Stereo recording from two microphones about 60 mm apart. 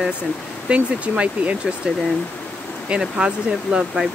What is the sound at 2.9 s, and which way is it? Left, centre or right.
Speech, centre.